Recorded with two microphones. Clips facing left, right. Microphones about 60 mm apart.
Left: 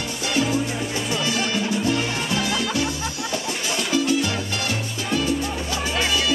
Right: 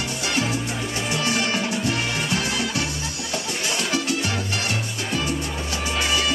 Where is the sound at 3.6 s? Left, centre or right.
Right.